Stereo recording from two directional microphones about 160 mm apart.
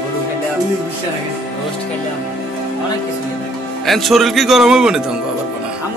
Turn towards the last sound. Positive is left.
turn(degrees=-5)  # may be behind; listen again after turning